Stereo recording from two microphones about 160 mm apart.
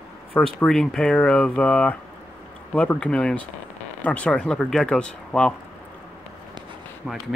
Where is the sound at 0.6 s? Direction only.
5° left (ahead or behind).